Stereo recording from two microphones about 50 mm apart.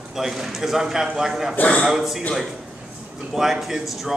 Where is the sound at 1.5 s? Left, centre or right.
Left.